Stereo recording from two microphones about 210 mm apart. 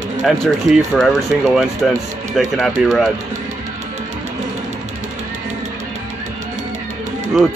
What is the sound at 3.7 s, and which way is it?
Music, 35° right (ahead or behind).